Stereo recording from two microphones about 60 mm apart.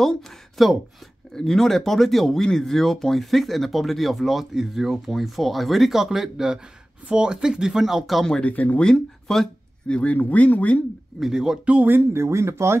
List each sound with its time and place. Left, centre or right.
0.0 s speech: centre
8.3 s speech: left
8.8 s speech: centre
9.8 s speech: left
11.1 s speech: centre
11.6 s speech: right
12.1 s speech: right